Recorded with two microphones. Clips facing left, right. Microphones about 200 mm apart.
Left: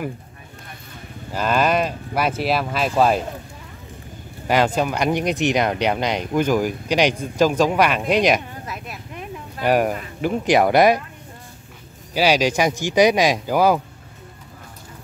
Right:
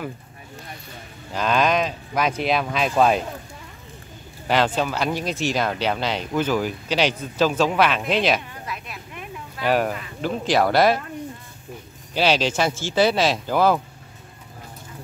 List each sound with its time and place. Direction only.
1.3 s speech: 5° left (ahead or behind)
4.5 s speech: 10° left (ahead or behind)
8.6 s a sound: 40° left (ahead or behind)
9.7 s speech: 15° left (ahead or behind)
12.1 s speech: 10° left (ahead or behind)